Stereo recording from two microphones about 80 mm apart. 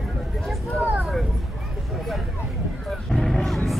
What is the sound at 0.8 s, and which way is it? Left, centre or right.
Vehicle, centre.